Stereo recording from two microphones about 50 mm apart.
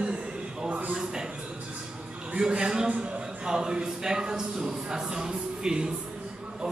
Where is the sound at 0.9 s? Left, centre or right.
Centre.